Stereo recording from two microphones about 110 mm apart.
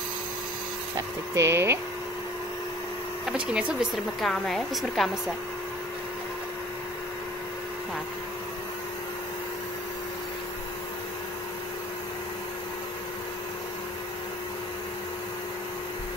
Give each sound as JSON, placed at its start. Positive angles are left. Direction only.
{"t": 0.9, "sound": "speech", "side_deg": -25}
{"t": 3.3, "sound": "speech", "side_deg": -10}
{"t": 4.2, "sound": "a woman's voice", "side_deg": 5}